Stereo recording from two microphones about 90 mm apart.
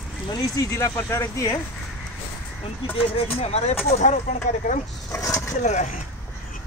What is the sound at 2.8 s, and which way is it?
Speech, 90° left.